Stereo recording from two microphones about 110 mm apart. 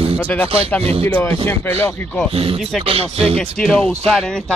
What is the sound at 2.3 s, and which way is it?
Speech, 60° right (ahead or behind).